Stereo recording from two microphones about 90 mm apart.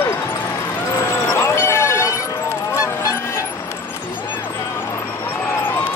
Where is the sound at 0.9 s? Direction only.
35° left (ahead or behind).